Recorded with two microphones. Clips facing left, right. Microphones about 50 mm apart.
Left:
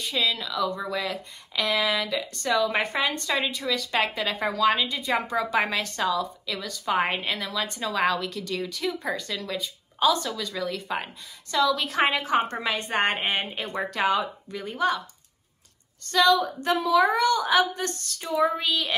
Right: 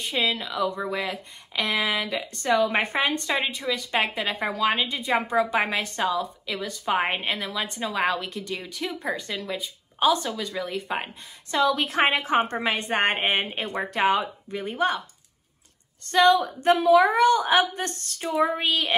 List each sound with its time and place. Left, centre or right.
0.0 s speech: right
16.1 s a woman's voice: right